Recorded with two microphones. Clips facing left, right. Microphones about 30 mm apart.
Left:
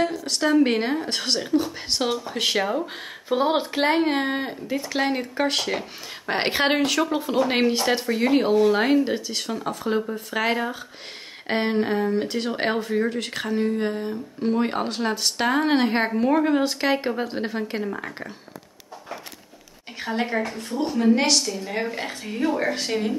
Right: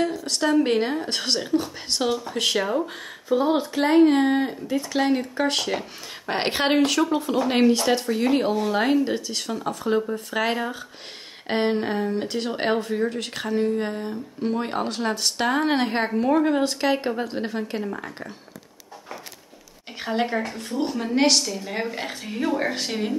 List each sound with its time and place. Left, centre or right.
0.2 s speech: centre
3.3 s speech: left
4.2 s speech: centre
20.0 s speech: centre